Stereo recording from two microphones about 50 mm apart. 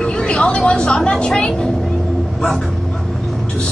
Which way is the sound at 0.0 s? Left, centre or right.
Centre.